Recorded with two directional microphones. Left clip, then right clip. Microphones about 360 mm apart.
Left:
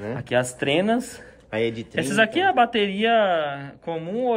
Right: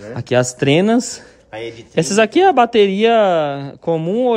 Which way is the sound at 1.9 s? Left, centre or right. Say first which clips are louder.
Right 8 dB; centre.